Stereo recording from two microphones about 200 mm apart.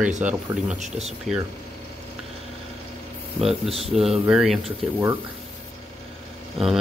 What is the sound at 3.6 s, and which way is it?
Speech, 30° right (ahead or behind).